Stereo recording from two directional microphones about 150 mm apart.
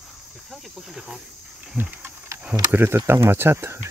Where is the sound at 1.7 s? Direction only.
15° right (ahead or behind).